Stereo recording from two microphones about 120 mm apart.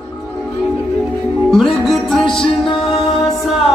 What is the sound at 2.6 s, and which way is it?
Music, 45° left (ahead or behind).